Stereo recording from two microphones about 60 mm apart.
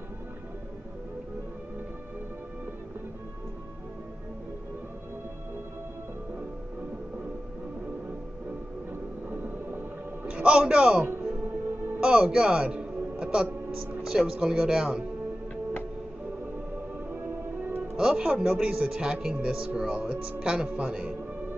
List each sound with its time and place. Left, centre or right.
9.3 s a sound: right
10.2 s a man's voice: centre
11.1 s music: right
12.0 s a man's voice: centre
17.1 s music: right
17.9 s speech: centre